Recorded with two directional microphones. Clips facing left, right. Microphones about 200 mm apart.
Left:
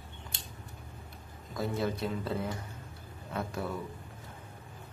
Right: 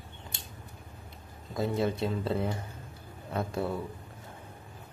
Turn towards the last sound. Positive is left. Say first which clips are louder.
# right 4 dB
turn(degrees=-30)  # may be behind; listen again after turning